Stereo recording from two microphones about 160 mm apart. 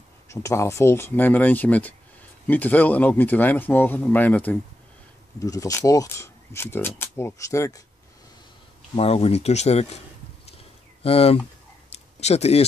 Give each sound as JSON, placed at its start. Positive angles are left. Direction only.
{"t": 0.3, "sound": "speech", "side_deg": 20}
{"t": 5.4, "sound": "speech", "side_deg": 20}
{"t": 8.9, "sound": "speech", "side_deg": 40}
{"t": 11.0, "sound": "speech", "side_deg": 40}
{"t": 11.9, "sound": "a sound", "side_deg": 40}